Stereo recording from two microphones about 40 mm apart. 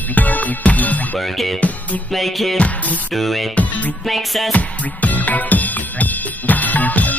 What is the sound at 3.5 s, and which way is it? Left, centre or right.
Music, left.